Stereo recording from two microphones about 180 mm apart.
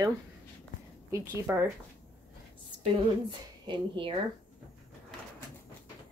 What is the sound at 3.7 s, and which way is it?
Speech, 30° right (ahead or behind).